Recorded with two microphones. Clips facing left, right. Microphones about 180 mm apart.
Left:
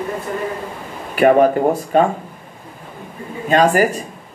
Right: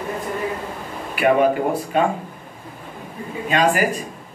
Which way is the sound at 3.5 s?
40° left (ahead or behind).